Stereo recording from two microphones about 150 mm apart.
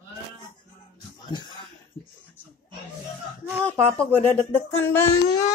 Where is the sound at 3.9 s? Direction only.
15° left (ahead or behind).